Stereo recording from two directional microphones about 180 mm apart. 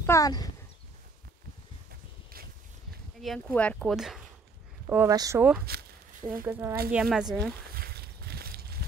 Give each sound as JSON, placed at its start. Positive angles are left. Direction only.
{"t": 0.0, "sound": "speech", "side_deg": 20}
{"t": 3.2, "sound": "speech", "side_deg": 0}
{"t": 4.8, "sound": "speech", "side_deg": -15}
{"t": 5.7, "sound": "speech", "side_deg": -60}
{"t": 6.4, "sound": "speech", "side_deg": -15}
{"t": 7.7, "sound": "a sound", "side_deg": -60}